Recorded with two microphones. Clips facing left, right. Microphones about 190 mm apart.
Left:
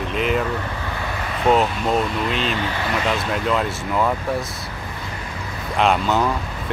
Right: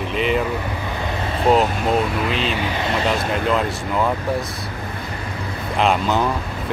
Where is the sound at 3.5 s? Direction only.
Centre (ahead or behind).